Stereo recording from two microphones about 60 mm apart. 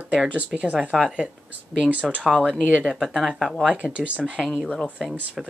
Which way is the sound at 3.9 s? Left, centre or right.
Centre.